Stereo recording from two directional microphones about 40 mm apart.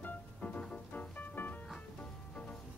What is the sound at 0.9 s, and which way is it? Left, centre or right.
Music, left.